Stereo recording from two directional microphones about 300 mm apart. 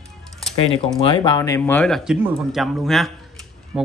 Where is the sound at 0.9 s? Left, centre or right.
Centre.